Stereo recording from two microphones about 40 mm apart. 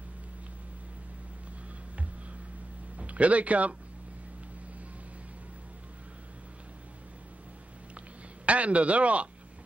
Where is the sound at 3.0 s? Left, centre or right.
Right.